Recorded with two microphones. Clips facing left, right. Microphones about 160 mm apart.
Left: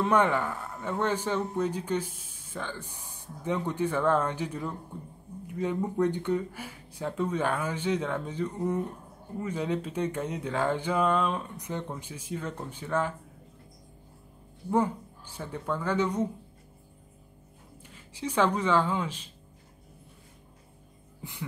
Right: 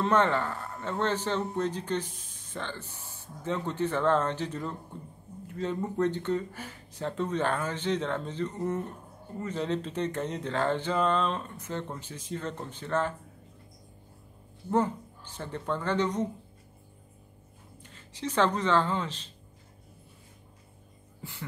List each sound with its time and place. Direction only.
0.0 s speech: 10° left (ahead or behind)
14.7 s speech: 10° left (ahead or behind)
17.8 s speech: 10° left (ahead or behind)
21.2 s a sound: 15° left (ahead or behind)